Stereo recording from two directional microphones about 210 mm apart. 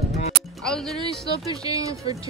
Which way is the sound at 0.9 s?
20° right (ahead or behind).